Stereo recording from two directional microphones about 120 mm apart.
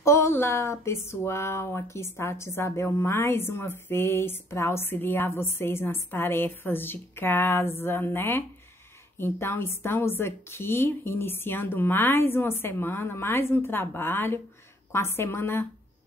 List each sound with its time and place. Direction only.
0.0 s speech: 25° left (ahead or behind)